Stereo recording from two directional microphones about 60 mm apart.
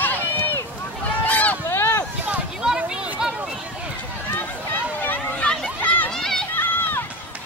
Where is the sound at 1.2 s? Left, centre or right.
Left.